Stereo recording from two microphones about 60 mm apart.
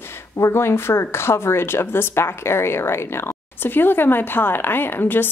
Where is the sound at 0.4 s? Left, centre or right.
Left.